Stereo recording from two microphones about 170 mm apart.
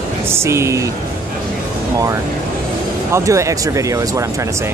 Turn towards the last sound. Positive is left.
turn(degrees=-20)  # may be behind; listen again after turning